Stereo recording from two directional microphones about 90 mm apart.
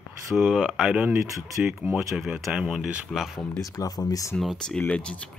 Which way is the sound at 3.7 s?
40° left (ahead or behind).